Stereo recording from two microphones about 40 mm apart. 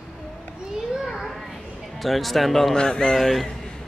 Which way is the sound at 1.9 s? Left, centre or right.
Centre.